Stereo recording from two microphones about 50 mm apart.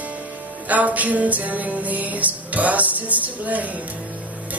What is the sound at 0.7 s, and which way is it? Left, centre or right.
Music, right.